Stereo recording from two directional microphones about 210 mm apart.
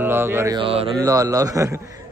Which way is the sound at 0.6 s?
25° right (ahead or behind).